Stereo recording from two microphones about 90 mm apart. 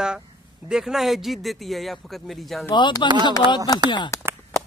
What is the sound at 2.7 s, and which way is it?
Speech, 60° left (ahead or behind).